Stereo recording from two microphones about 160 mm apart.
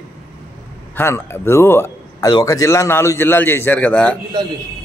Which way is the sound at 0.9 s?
15° left (ahead or behind).